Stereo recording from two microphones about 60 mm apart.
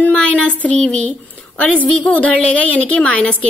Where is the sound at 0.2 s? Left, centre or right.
Left.